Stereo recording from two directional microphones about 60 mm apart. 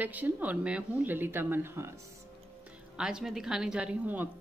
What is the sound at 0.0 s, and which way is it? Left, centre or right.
Speech, right.